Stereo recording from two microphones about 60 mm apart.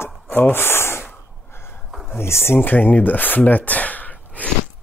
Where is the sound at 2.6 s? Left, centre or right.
Left.